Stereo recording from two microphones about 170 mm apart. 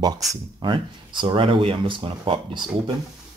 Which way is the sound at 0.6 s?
30° right (ahead or behind).